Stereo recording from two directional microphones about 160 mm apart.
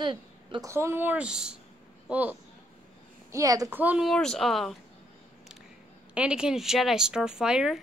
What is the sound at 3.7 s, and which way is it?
Speech, 10° right (ahead or behind).